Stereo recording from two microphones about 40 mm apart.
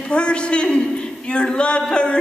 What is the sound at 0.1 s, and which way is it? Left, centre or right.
A man's voice, left.